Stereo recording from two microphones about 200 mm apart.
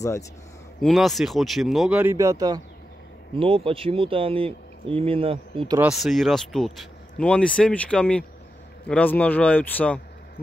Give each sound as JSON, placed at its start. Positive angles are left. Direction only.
{"t": 0.7, "sound": "speech", "side_deg": 0}
{"t": 5.8, "sound": "a man's voice", "side_deg": -5}